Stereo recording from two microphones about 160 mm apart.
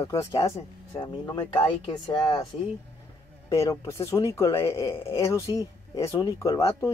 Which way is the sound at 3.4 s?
20° left (ahead or behind).